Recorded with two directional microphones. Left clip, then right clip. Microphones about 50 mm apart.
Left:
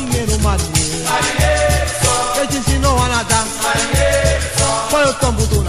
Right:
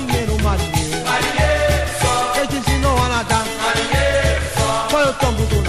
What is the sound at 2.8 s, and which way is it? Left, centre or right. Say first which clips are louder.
Music: left 3 dB; left.